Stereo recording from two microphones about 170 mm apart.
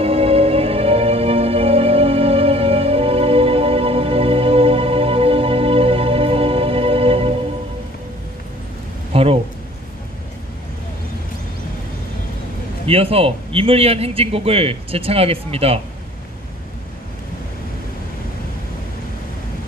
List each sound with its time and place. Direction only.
0.0 s music: 35° right (ahead or behind)
9.1 s a sound: 35° right (ahead or behind)
12.8 s a man's voice: 35° right (ahead or behind)